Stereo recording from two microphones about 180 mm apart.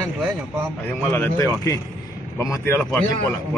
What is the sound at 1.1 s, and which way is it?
A man's voice, 15° left (ahead or behind).